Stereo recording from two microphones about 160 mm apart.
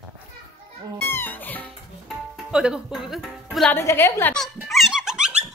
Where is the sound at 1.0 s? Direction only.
15° left (ahead or behind).